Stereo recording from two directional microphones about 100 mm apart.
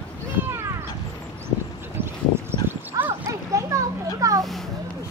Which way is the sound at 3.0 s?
35° right (ahead or behind).